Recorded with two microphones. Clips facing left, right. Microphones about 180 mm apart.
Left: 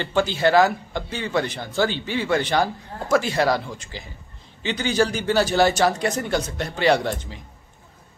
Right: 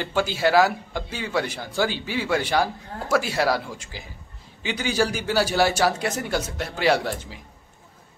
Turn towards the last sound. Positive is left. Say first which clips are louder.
# left 2 dB
turn(degrees=-5)  # may be behind; listen again after turning